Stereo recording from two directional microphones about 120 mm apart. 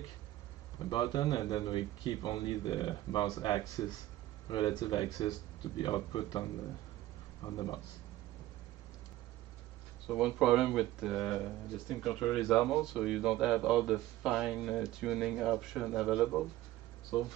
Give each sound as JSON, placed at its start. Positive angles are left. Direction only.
{"t": 0.7, "sound": "speech", "side_deg": 35}
{"t": 10.0, "sound": "speech", "side_deg": -5}